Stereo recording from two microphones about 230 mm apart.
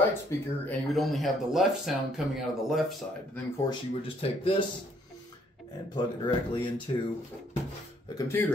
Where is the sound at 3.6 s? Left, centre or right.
Left.